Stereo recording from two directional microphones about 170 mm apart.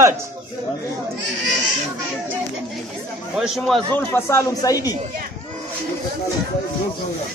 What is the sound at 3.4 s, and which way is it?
Speech, centre (ahead or behind).